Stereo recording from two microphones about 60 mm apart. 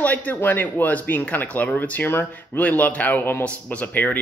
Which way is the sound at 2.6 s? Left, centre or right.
Left.